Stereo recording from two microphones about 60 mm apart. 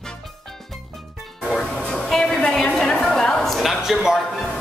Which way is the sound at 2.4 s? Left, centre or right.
Centre.